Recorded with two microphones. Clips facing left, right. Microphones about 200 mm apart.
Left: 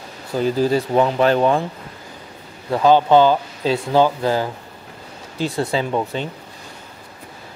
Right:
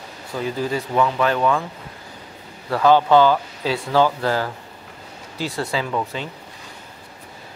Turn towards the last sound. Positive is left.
turn(degrees=25)  # may be behind; listen again after turning